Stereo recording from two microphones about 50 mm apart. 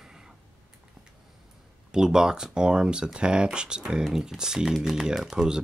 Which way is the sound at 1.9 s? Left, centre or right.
Centre.